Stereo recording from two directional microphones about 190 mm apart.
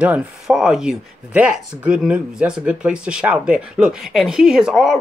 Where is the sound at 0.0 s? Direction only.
5° right (ahead or behind).